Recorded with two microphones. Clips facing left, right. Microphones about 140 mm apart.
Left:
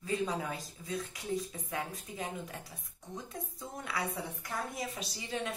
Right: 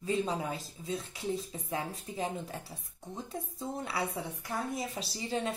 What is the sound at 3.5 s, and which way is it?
A woman's voice, 30° right (ahead or behind).